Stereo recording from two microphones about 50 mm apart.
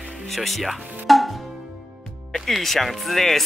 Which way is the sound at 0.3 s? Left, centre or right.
Centre.